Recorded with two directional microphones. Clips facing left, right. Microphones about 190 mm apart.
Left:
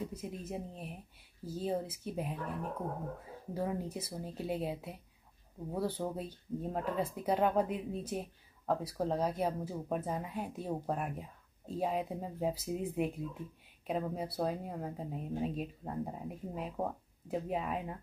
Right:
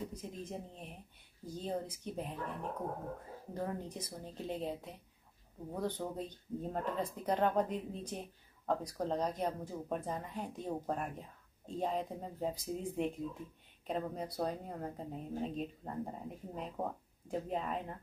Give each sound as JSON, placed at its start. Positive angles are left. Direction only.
{"t": 0.1, "sound": "speech", "side_deg": 5}
{"t": 3.5, "sound": "speech", "side_deg": 10}